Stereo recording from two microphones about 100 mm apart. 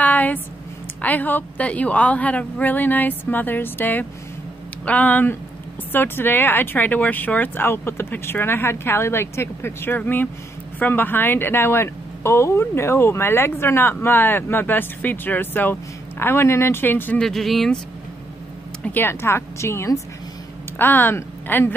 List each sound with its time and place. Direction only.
0.0 s a sound: 15° left (ahead or behind)
1.0 s a woman's voice: 15° left (ahead or behind)
17.2 s speech: 5° left (ahead or behind)
18.9 s speech: 20° left (ahead or behind)